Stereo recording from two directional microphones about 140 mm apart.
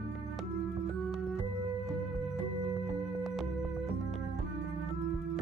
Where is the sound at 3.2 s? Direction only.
Centre (ahead or behind).